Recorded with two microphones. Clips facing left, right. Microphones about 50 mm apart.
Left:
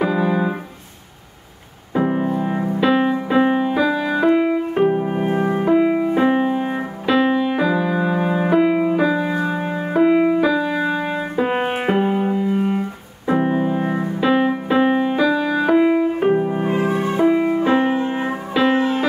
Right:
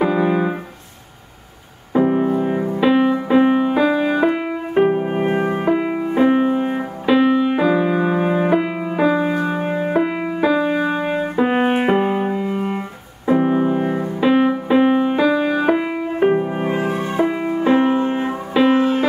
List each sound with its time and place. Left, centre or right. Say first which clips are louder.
0.0 s keyboard: right 2 dB; centre
2.0 s music: right 3 dB; centre
5.0 s music: right 1 dB; right
5.7 s music: left 3 dB; centre
10.5 s music: right 2 dB; centre
11.3 s music: right 3 dB; centre
13.3 s piano: right 2 dB; centre
16.3 s music: even; centre
17.1 s music: left 5 dB; centre